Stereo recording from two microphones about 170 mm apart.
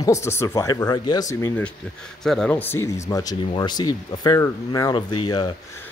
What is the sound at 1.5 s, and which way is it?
Speech, 5° left (ahead or behind).